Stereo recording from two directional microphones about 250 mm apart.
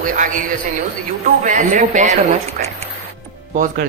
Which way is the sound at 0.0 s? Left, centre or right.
Right.